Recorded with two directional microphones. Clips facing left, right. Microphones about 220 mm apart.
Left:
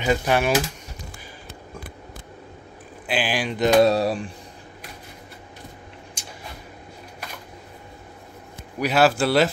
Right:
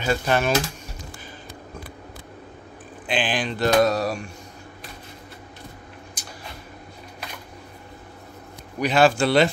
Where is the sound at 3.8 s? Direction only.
30° left (ahead or behind).